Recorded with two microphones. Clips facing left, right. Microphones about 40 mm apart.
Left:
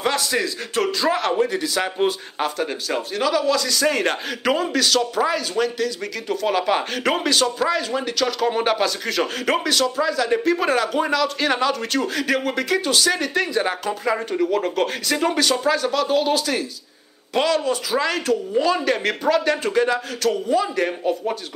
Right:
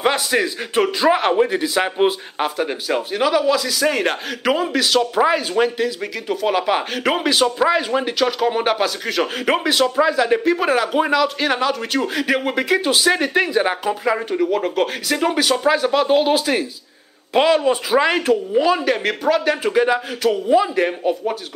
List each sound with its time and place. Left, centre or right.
0.0 s a man's voice: right